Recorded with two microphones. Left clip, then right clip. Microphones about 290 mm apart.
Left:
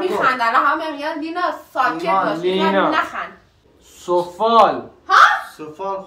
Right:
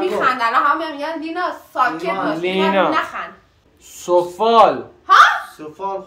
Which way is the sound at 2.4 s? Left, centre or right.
Right.